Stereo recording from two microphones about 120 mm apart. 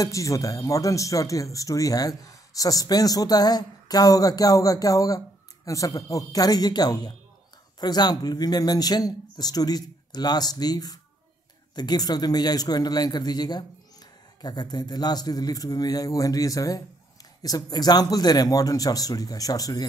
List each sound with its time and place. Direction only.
0.0 s speech: 25° left (ahead or behind)